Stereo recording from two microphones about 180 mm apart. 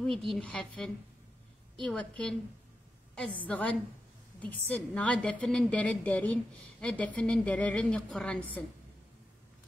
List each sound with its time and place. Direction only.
0.0 s a woman's voice: centre (ahead or behind)
3.3 s a woman's voice: 10° left (ahead or behind)